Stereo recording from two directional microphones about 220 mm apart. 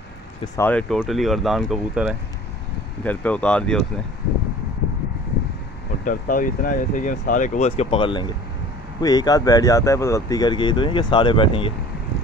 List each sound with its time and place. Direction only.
0.6 s speech: 5° left (ahead or behind)
6.0 s speech: 40° left (ahead or behind)